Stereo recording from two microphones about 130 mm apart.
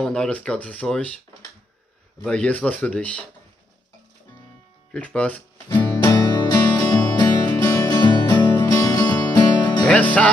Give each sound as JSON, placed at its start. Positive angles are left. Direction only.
{"t": 0.0, "sound": "speech", "side_deg": 5}
{"t": 2.2, "sound": "speech", "side_deg": 10}
{"t": 4.9, "sound": "speech", "side_deg": 10}
{"t": 6.0, "sound": "music", "side_deg": 30}
{"t": 9.8, "sound": "speech", "side_deg": 10}